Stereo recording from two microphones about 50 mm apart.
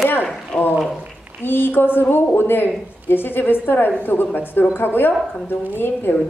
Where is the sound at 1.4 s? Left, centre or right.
Left.